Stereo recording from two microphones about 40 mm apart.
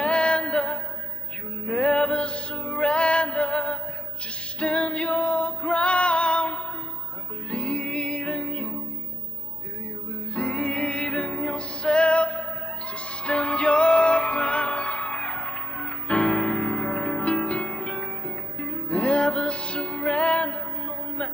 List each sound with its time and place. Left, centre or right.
0.0 s music: left
10.3 s music: left